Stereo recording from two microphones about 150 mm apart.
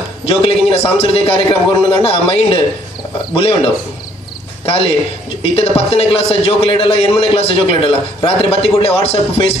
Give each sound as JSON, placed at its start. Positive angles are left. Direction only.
{"t": 0.2, "sound": "a man's voice", "side_deg": 40}